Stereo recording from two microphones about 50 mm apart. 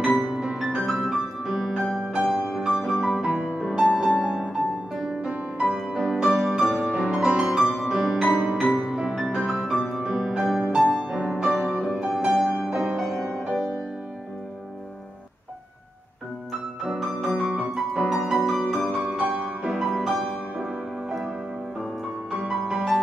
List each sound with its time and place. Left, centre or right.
0.1 s music: centre
1.4 s music: centre
2.1 s music: centre
4.9 s music: centre
6.9 s music: centre
8.4 s music: right
8.7 s music: centre
10.8 s music: centre
11.1 s music: centre
13.3 s music: centre
16.8 s music: centre
17.6 s music: centre
22.3 s music: centre